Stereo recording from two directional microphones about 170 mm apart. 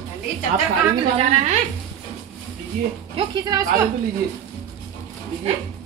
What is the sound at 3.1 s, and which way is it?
Speech, 25° right (ahead or behind).